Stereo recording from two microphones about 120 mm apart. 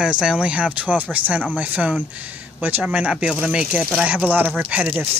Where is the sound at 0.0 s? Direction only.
5° right (ahead or behind).